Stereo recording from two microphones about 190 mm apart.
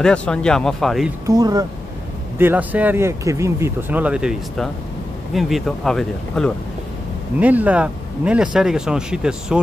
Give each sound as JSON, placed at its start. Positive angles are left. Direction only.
{"t": 0.0, "sound": "speech", "side_deg": 5}
{"t": 1.2, "sound": "speech", "side_deg": -20}
{"t": 7.3, "sound": "speech", "side_deg": -10}